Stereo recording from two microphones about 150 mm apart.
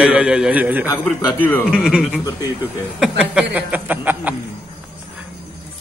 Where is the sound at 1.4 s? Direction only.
15° left (ahead or behind).